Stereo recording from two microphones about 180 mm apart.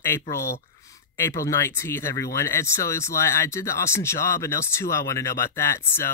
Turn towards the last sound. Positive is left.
turn(degrees=15)  # may be behind; listen again after turning